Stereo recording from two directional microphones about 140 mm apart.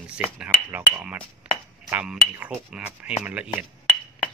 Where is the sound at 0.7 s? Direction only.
15° right (ahead or behind).